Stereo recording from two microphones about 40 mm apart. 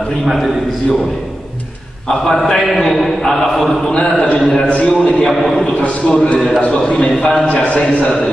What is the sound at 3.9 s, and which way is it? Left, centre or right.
Speech, left.